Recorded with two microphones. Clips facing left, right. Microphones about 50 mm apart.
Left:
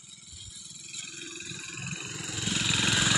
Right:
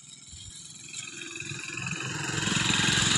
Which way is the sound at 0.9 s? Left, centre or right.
Centre.